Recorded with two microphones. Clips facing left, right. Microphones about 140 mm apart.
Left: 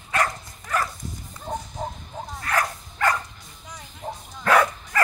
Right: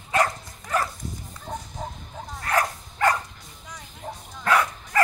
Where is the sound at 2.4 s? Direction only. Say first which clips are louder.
Right 1 dB; 25° right (ahead or behind).